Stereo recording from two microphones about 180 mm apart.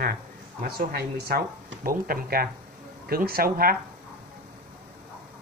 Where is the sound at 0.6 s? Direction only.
55° right (ahead or behind).